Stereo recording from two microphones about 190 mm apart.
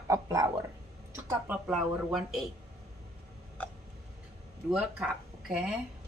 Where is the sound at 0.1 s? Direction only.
15° right (ahead or behind).